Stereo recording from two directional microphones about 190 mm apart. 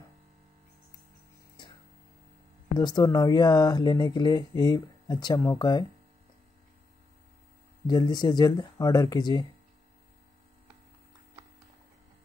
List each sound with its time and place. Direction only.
2.8 s speech: 20° left (ahead or behind)
7.8 s speech: 20° left (ahead or behind)